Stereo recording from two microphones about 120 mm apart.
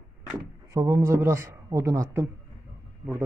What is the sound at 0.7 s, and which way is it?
Speech, 25° right (ahead or behind).